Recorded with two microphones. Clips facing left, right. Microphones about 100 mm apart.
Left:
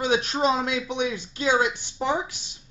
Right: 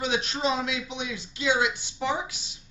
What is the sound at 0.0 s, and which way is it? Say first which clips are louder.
Speech: left 5 dB; 45° left (ahead or behind).